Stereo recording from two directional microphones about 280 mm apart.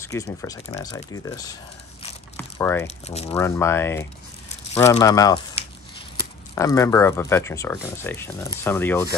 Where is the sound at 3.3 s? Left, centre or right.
Centre.